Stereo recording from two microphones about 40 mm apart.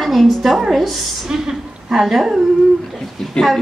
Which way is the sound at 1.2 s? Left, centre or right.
Centre.